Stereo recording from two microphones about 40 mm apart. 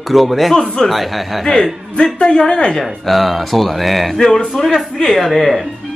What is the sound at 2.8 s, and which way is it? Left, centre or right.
Speech, centre.